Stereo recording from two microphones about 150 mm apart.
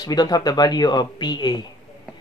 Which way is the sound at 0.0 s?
25° left (ahead or behind).